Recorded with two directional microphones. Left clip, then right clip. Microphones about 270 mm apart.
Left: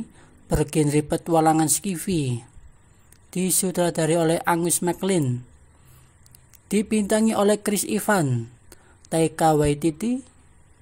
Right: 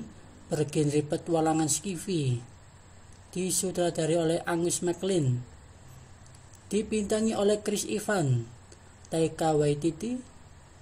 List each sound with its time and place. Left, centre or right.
0.5 s a woman's voice: left
6.7 s a woman's voice: left